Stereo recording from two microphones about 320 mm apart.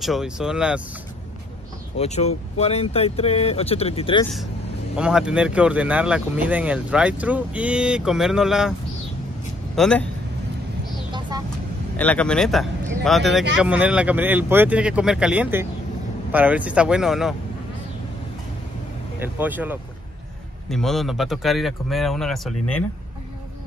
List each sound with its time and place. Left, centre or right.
0.0 s speech: centre
2.0 s speech: centre
4.9 s speech: centre
9.8 s speech: centre
11.1 s vehicle: centre
12.0 s speech: centre
19.2 s speech: centre